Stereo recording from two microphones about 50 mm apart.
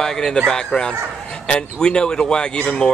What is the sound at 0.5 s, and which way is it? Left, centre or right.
Speech, centre.